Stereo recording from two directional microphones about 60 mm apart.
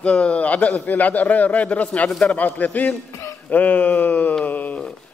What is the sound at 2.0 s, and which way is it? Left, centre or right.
Speech, centre.